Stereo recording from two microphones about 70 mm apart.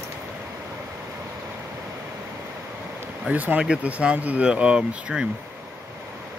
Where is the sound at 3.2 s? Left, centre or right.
Right.